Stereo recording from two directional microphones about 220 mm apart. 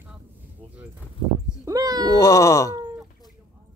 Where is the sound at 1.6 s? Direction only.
15° right (ahead or behind).